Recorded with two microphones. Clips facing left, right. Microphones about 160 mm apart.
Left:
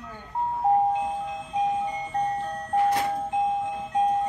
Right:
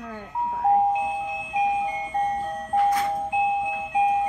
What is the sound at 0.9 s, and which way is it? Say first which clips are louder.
Music: right 2 dB; 5° right (ahead or behind).